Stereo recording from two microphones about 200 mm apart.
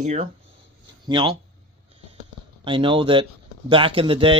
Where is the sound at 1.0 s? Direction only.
25° right (ahead or behind).